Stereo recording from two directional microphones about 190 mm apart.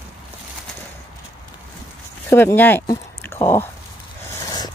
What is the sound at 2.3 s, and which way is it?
Speech, 10° left (ahead or behind).